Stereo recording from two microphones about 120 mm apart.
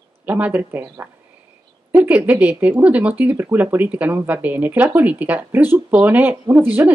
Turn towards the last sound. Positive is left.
turn(degrees=-20)  # may be behind; listen again after turning